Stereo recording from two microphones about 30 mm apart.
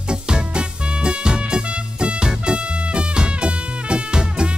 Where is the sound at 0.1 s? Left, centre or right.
Right.